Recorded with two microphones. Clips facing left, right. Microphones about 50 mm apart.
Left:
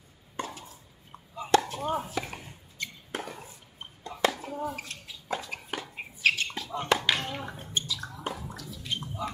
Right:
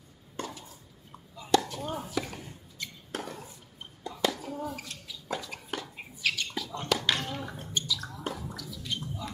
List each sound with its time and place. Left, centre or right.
0.4 s chopping: left
1.3 s chop: left
1.6 s chopping: left
2.1 s chop: centre
4.1 s a sound: left
6.2 s bird: left
6.8 s a sound: left
8.2 s bathtub: centre
8.5 s gargling: left